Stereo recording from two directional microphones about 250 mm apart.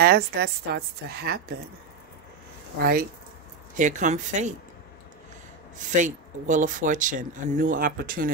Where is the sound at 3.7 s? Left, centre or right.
Right.